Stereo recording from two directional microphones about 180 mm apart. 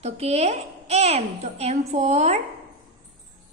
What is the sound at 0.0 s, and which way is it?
A child's voice, 35° right (ahead or behind).